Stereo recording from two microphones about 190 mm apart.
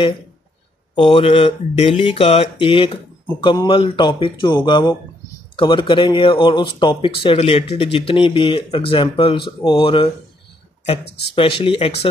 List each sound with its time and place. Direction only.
0.9 s speech: 30° left (ahead or behind)
11.3 s speech: 30° left (ahead or behind)